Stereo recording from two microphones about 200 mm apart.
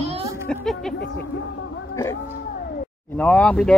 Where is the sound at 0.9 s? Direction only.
55° left (ahead or behind).